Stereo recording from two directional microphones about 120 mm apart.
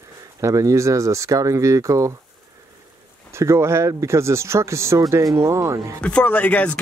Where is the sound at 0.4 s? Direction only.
25° right (ahead or behind).